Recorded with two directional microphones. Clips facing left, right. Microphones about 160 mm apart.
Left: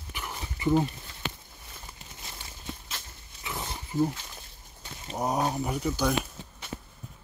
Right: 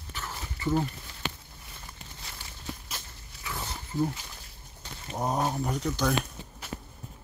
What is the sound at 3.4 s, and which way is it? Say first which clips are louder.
Wild animals: left 1 dB; 20° left (ahead or behind).